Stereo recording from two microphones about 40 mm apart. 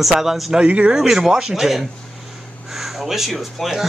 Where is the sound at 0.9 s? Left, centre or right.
Centre.